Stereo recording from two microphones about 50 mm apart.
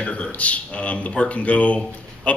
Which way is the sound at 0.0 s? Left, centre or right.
Left.